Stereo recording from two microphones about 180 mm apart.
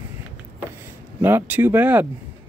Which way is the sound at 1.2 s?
10° right (ahead or behind).